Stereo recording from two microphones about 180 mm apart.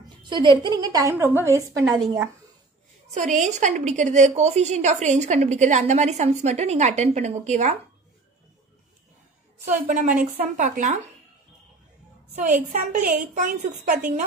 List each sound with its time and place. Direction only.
0.3 s a woman's voice: 25° right (ahead or behind)
3.3 s a woman's voice: 45° right (ahead or behind)
9.7 s a woman's voice: 45° right (ahead or behind)
12.4 s a woman's voice: 45° right (ahead or behind)